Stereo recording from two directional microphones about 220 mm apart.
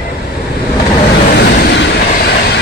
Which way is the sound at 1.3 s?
45° left (ahead or behind).